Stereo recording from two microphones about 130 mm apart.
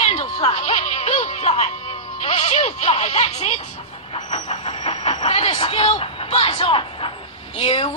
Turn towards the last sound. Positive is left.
turn(degrees=45)  # may be behind; listen again after turning